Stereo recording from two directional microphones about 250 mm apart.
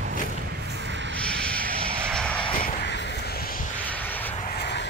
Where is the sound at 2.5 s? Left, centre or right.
Left.